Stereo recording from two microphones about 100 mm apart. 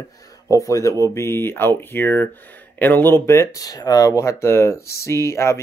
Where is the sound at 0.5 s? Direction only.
30° left (ahead or behind).